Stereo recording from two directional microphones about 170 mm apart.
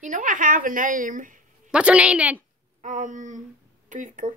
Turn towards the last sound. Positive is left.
turn(degrees=-50)  # may be behind; listen again after turning